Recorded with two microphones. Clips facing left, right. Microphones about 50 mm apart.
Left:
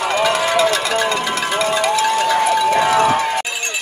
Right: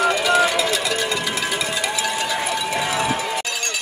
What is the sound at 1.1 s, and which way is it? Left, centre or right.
Music, left.